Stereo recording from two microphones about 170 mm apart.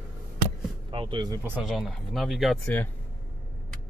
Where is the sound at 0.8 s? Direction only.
30° right (ahead or behind).